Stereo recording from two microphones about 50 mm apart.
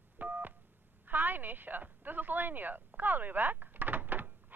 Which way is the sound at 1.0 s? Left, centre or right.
Right.